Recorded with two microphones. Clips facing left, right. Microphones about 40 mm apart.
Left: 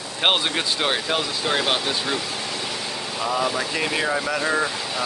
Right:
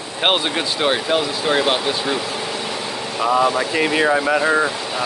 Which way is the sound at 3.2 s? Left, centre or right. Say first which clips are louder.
Right 7 dB; right.